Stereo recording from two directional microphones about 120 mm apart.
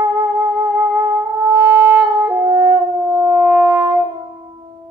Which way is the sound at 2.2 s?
25° right (ahead or behind).